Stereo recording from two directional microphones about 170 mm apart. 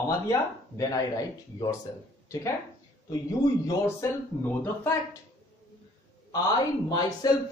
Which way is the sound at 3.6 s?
15° left (ahead or behind).